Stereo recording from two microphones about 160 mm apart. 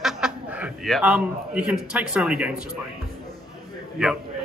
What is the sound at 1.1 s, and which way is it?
A man's voice, 10° right (ahead or behind).